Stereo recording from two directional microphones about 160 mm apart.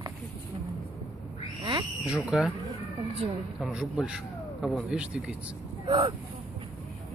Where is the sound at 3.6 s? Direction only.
5° right (ahead or behind).